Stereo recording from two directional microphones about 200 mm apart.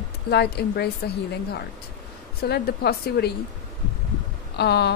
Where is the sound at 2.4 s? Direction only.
55° left (ahead or behind).